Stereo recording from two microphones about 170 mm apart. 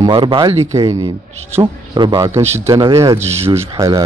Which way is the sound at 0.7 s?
20° right (ahead or behind).